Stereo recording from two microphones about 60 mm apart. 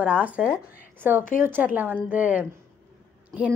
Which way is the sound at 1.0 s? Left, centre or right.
Right.